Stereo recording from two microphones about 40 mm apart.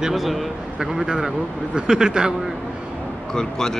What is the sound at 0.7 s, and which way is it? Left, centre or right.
A man's voice, centre.